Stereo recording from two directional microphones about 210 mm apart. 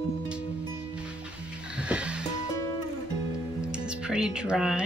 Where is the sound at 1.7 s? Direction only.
5° right (ahead or behind).